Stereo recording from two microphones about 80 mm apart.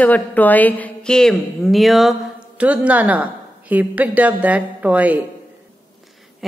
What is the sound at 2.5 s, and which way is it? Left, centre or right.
A woman's voice, centre.